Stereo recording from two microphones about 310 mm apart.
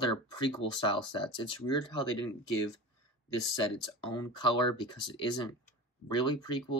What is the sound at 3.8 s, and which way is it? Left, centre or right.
Speech, centre.